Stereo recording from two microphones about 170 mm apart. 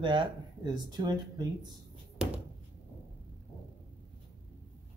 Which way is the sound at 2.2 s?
5° right (ahead or behind).